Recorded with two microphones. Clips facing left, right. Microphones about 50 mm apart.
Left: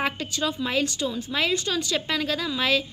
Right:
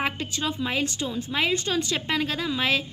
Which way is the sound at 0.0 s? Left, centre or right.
Right.